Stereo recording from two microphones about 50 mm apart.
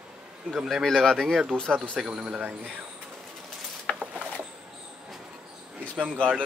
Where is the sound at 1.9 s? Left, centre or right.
Centre.